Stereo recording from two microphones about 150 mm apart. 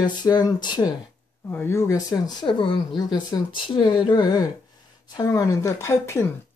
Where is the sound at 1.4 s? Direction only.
15° left (ahead or behind).